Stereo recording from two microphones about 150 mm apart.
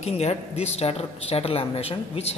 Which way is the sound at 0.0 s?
45° left (ahead or behind).